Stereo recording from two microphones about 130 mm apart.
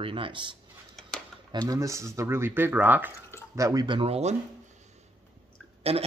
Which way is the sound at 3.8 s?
45° right (ahead or behind).